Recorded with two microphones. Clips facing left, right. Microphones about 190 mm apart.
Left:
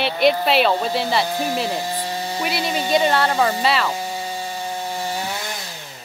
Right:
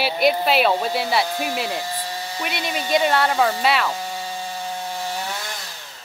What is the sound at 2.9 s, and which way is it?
Speech, centre (ahead or behind).